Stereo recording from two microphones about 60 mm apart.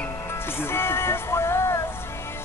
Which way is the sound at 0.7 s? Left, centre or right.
Left.